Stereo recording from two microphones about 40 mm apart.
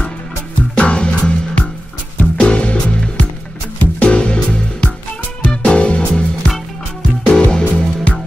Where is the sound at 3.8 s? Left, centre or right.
Left.